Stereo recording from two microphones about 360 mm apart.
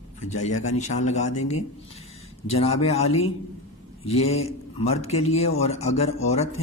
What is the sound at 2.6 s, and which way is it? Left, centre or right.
Speech, centre.